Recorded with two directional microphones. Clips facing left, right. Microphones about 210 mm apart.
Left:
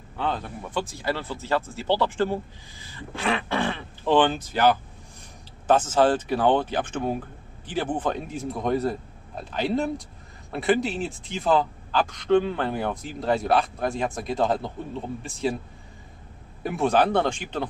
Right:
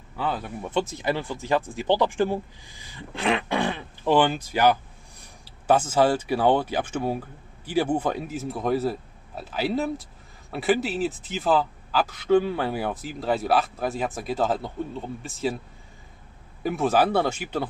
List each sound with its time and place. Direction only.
0.2 s speech: 5° right (ahead or behind)
0.7 s a man's voice: 20° right (ahead or behind); by 15.5 s centre (ahead or behind)
16.6 s speech: centre (ahead or behind)